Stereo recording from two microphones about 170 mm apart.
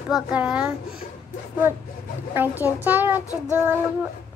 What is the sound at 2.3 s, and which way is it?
Speech, 10° right (ahead or behind).